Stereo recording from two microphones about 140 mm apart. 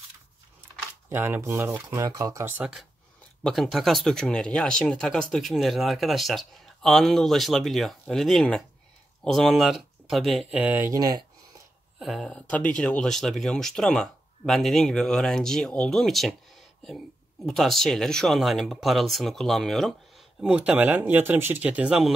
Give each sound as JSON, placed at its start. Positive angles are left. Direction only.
{"t": 1.1, "sound": "speech", "side_deg": -15}
{"t": 10.5, "sound": "speech", "side_deg": -10}
{"t": 10.9, "sound": "speech", "side_deg": -30}
{"t": 12.0, "sound": "speech", "side_deg": 0}
{"t": 17.5, "sound": "speech", "side_deg": 0}